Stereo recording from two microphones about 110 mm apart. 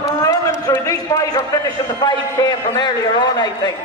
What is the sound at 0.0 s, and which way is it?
A man's voice, 30° left (ahead or behind).